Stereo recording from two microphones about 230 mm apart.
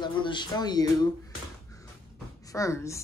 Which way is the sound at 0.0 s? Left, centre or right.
Centre.